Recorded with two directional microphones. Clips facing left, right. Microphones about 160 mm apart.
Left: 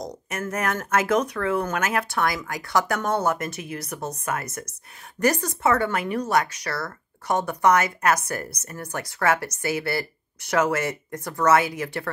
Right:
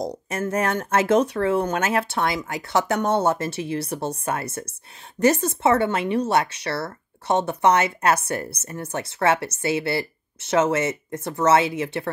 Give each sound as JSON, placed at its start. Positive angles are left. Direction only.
{"t": 0.0, "sound": "speech", "side_deg": -30}